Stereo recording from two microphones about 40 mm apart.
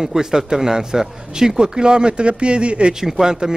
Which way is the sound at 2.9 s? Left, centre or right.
Centre.